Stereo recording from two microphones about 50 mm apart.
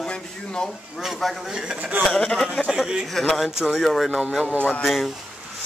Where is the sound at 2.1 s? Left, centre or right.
Centre.